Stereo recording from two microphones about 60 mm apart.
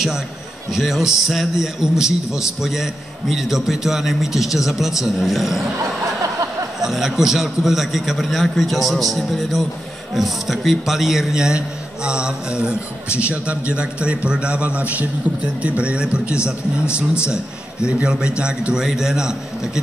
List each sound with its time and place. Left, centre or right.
0.7 s a man's voice: centre
6.8 s a man's voice: centre
17.8 s a man's voice: centre